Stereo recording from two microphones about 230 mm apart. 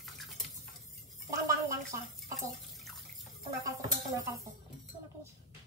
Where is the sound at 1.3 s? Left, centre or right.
Centre.